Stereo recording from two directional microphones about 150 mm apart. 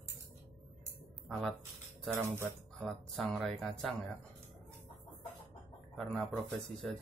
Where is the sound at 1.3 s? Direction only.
Centre (ahead or behind).